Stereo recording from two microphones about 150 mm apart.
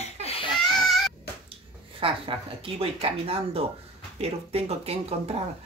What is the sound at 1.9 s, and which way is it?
Speech, 35° right (ahead or behind).